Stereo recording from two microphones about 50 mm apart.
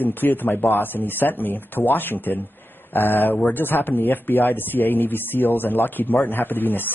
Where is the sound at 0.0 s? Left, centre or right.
Left.